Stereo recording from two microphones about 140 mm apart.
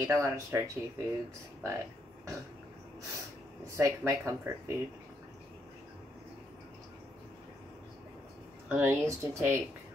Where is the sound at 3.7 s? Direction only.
20° right (ahead or behind).